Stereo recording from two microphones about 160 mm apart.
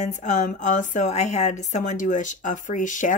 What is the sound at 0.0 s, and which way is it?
A woman's voice, 50° left (ahead or behind).